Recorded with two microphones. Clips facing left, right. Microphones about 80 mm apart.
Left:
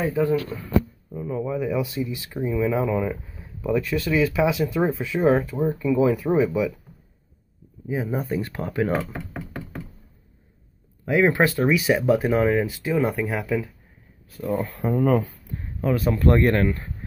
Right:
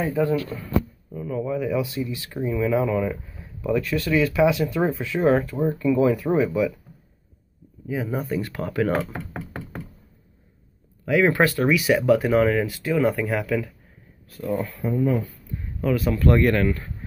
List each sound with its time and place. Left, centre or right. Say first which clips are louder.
1.1 s speech: even; centre
5.7 s speech: right 1 dB; centre
6.0 s speech: even; centre
7.9 s speech: even; left
9.0 s knock: right 1 dB; centre
11.1 s speech: even; left
14.7 s speech: left 2 dB; left
15.8 s speech: even; left